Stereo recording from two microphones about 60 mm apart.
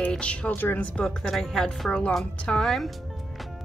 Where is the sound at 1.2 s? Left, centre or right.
Centre.